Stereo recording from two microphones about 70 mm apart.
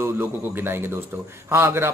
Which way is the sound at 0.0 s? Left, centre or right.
Right.